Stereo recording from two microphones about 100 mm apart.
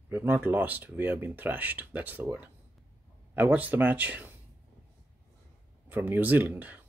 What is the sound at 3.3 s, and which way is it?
Speech, 15° right (ahead or behind).